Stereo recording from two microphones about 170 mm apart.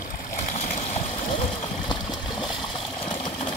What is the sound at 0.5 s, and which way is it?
Water, 40° left (ahead or behind).